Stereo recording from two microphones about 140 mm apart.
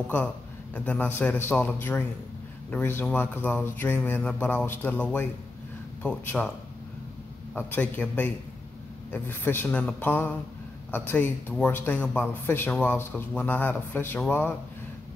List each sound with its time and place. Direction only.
0.7 s speech: 10° left (ahead or behind)
7.5 s speech: 10° left (ahead or behind)